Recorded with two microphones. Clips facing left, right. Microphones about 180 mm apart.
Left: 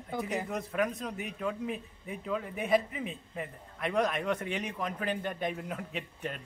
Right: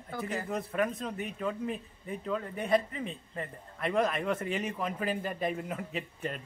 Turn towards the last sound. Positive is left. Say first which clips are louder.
# right 2 dB
turn(degrees=0)  # may be behind; listen again after turning